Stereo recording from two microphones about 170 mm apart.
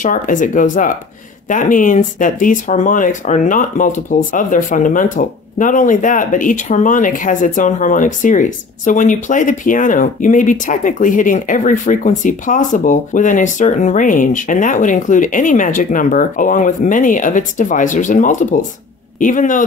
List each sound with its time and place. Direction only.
0.0 s speech: 50° left (ahead or behind)